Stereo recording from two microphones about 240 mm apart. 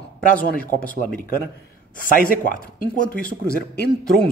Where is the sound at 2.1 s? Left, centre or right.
Left.